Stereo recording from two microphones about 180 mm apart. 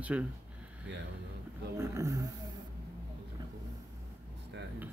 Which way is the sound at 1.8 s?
15° right (ahead or behind).